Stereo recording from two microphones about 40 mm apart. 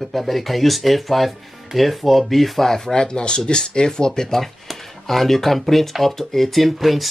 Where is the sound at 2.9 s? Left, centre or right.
Left; by 7.0 s centre.